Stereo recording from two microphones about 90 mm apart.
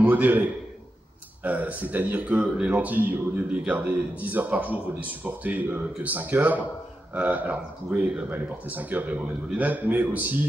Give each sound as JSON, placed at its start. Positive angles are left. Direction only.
{"t": 0.0, "sound": "a man's voice", "side_deg": -20}